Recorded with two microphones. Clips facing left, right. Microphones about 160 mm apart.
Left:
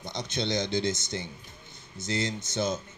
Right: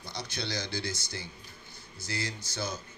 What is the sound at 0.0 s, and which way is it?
Speech, 20° left (ahead or behind).